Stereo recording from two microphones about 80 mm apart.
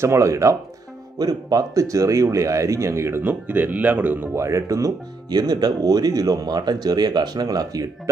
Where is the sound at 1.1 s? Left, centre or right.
Right.